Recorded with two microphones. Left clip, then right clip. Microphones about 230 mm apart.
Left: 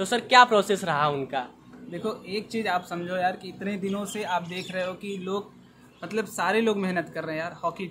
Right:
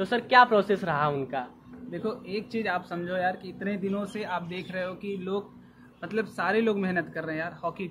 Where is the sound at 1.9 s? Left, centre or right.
Centre.